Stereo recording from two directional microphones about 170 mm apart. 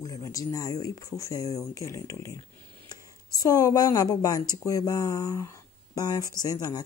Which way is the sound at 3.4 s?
20° left (ahead or behind).